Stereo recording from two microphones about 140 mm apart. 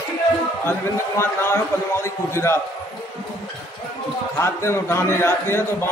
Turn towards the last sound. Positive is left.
turn(degrees=20)  # may be behind; listen again after turning